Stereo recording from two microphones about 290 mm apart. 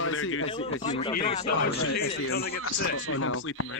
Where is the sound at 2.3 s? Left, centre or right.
Left.